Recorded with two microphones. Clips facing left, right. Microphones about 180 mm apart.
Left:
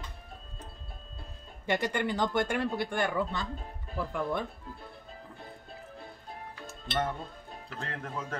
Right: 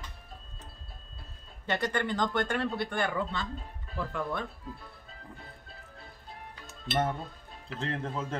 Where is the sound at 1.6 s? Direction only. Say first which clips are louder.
Left 1 dB; 10° left (ahead or behind).